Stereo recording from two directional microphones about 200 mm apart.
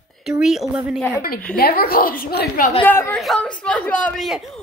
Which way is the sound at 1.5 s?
50° left (ahead or behind).